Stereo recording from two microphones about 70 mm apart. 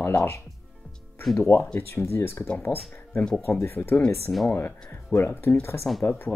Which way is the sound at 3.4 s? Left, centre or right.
Left.